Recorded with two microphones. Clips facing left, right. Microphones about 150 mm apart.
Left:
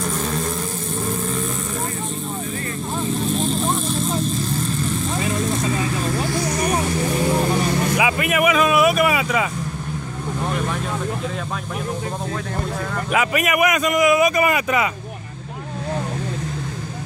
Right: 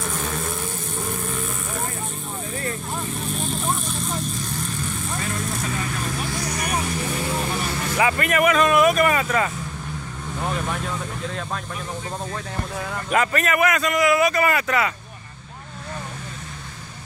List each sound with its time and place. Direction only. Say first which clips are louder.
0.0 s vehicle: left 4 dB; 5° right (ahead or behind)
5.1 s vehicle: left 5 dB; 20° left (ahead or behind)
6.6 s vehicle: left 5 dB; 30° left (ahead or behind)
7.9 s vehicle: left 1 dB; 10° left (ahead or behind)
13.1 s a man's voice: left 1 dB; 10° left (ahead or behind)